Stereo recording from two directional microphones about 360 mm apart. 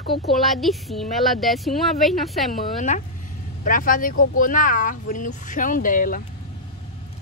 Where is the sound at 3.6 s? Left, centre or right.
Left.